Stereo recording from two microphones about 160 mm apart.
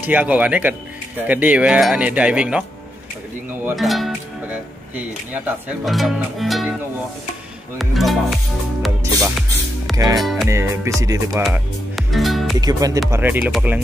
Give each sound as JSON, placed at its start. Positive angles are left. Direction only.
{"t": 0.0, "sound": "speech", "side_deg": -10}
{"t": 3.7, "sound": "speech", "side_deg": 0}
{"t": 4.9, "sound": "speech", "side_deg": -10}
{"t": 5.9, "sound": "speech", "side_deg": 0}
{"t": 7.8, "sound": "speech", "side_deg": 0}
{"t": 8.8, "sound": "music", "side_deg": 0}
{"t": 9.9, "sound": "music", "side_deg": -25}
{"t": 10.5, "sound": "speech", "side_deg": -15}
{"t": 11.0, "sound": "music", "side_deg": -20}
{"t": 11.4, "sound": "music", "side_deg": 0}
{"t": 12.5, "sound": "music", "side_deg": -25}
{"t": 13.1, "sound": "speech", "side_deg": -10}